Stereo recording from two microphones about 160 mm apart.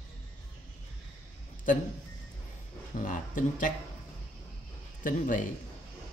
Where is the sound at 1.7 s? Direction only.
55° left (ahead or behind).